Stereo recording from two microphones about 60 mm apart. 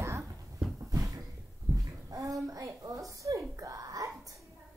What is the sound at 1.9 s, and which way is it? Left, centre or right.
A child's voice, right.